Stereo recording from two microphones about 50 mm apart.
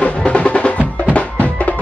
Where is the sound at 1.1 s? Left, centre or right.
Left.